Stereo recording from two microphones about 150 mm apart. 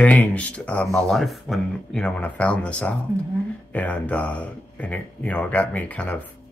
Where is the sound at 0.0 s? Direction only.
10° left (ahead or behind).